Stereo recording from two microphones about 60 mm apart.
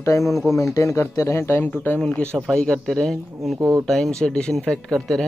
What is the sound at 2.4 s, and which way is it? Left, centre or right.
Speech, centre.